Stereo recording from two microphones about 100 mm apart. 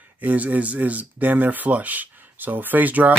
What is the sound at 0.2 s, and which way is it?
Speech, 15° right (ahead or behind).